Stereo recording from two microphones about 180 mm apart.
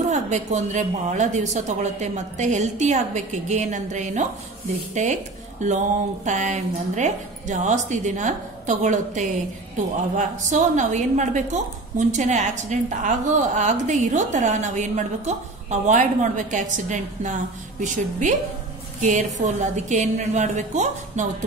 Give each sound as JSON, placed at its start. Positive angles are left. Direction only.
{"t": 0.1, "sound": "a woman's voice", "side_deg": -40}